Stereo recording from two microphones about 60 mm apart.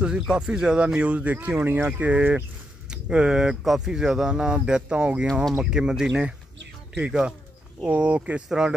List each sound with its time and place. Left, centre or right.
0.0 s speech: centre
2.9 s speech: centre
5.2 s speech: centre
5.5 s speech: centre
7.8 s speech: right
8.5 s speech: centre